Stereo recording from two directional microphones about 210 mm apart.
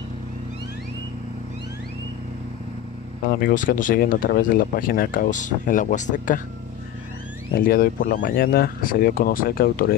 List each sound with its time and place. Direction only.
3.3 s speech: 40° left (ahead or behind)
7.5 s speech: 45° left (ahead or behind)